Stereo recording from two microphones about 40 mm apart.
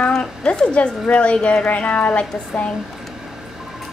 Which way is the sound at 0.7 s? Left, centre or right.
Left.